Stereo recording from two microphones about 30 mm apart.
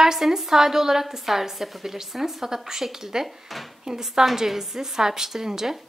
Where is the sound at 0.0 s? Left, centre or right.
Centre.